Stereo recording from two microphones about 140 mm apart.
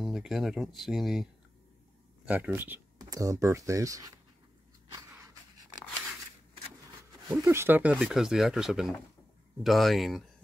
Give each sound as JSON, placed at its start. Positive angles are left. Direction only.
{"t": 0.0, "sound": "speech", "side_deg": 0}
{"t": 7.4, "sound": "speech", "side_deg": -15}